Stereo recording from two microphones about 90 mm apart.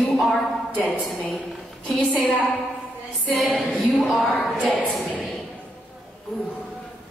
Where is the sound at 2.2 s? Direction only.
15° left (ahead or behind).